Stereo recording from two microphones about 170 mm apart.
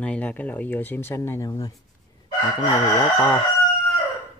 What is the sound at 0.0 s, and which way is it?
Speech, 5° left (ahead or behind).